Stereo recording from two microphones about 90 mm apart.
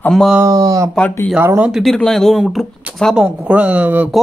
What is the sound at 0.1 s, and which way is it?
Speech, 5° left (ahead or behind).